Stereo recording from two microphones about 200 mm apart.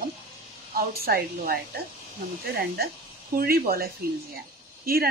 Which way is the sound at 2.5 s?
50° right (ahead or behind).